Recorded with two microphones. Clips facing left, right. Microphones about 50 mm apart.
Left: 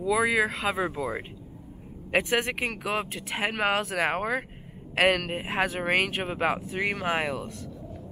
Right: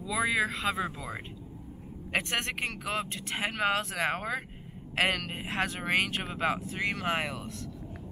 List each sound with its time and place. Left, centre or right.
0.2 s speech: centre
2.1 s speech: centre